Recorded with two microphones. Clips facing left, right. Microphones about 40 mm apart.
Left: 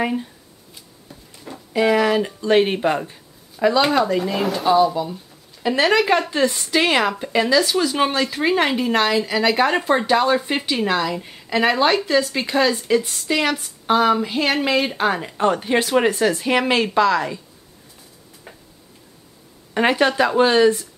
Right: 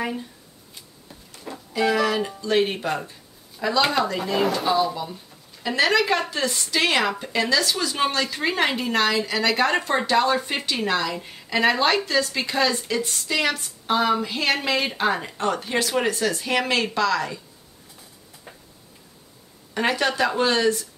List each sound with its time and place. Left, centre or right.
1.7 s a woman's voice: centre
3.8 s a woman's voice: centre
15.3 s speech: centre
19.7 s a woman's voice: left